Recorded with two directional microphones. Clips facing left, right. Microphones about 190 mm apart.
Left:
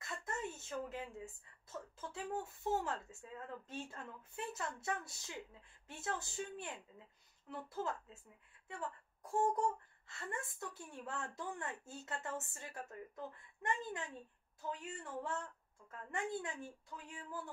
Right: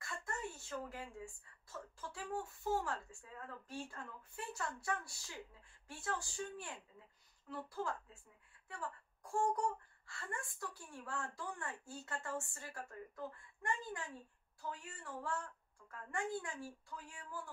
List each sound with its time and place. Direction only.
0.0 s a woman's voice: 20° left (ahead or behind)